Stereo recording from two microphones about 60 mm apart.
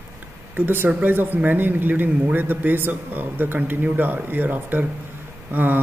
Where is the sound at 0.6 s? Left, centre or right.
Right.